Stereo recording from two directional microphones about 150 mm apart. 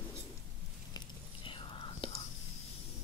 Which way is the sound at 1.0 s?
35° left (ahead or behind).